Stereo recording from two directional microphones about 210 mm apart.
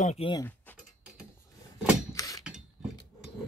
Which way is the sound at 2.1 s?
15° left (ahead or behind).